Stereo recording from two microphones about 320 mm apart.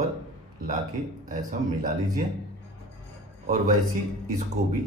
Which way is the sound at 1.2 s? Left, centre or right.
Right.